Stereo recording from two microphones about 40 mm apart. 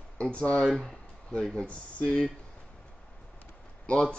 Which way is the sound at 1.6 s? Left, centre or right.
Left.